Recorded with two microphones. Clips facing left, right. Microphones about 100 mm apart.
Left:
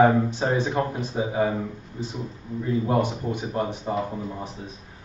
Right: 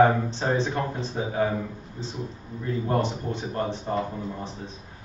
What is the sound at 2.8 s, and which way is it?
Speech, 10° left (ahead or behind).